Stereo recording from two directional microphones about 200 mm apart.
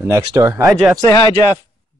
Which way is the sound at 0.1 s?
15° right (ahead or behind).